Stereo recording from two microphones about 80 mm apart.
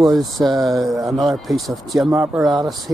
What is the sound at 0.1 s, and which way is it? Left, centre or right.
Speech, centre.